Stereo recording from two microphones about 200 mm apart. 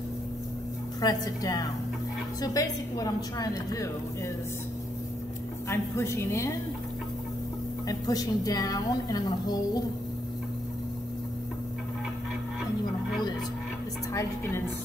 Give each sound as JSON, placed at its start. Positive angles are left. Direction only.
{"t": 1.0, "sound": "a woman's voice", "side_deg": 20}
{"t": 5.7, "sound": "a woman's voice", "side_deg": 15}
{"t": 7.9, "sound": "a woman's voice", "side_deg": 20}